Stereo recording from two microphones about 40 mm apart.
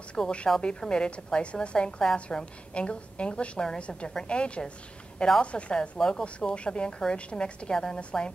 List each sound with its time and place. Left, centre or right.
0.2 s speech: centre
0.6 s a woman's voice: left
5.8 s speech: centre
6.2 s a woman's voice: left
7.7 s speech: centre
8.0 s a woman's voice: left